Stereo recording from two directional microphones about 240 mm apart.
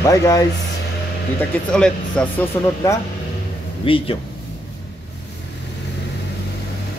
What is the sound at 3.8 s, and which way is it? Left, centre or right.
Speech, left.